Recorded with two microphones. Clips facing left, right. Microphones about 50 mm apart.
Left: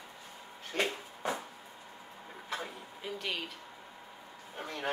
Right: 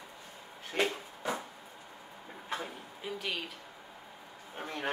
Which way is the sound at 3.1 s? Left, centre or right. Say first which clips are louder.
Even; centre.